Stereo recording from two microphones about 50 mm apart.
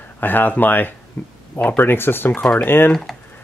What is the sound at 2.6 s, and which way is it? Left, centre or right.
Speech, left.